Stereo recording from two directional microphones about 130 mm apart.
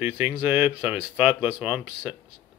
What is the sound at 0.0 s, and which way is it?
Speech, 15° right (ahead or behind).